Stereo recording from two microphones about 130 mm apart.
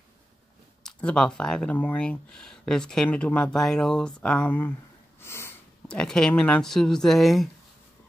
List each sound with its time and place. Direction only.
0.8 s speech: 5° left (ahead or behind)
5.2 s sniff: 20° left (ahead or behind)
5.9 s speech: 5° left (ahead or behind)